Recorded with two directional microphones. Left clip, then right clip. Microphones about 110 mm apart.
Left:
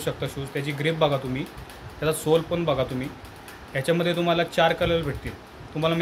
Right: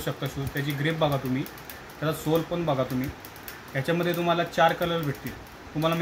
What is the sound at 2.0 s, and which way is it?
Speech, 45° left (ahead or behind).